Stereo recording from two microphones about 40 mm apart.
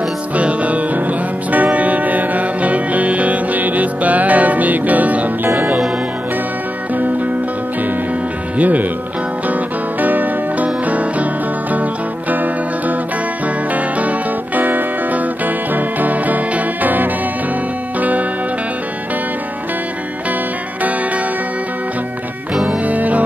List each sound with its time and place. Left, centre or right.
0.4 s music: right
6.9 s music: right
8.5 s music: right
22.5 s music: centre
22.8 s music: right